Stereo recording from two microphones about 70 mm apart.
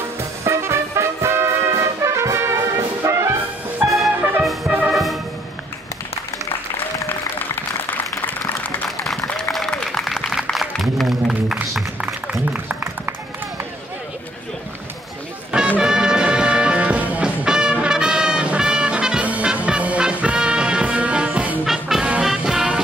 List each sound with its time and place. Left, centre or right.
0.5 s music: right
3.8 s music: right
7.1 s applause: left
8.8 s a sound: centre
9.4 s applause: centre
10.5 s music: centre
12.4 s music: right
15.8 s music: centre
21.6 s music: centre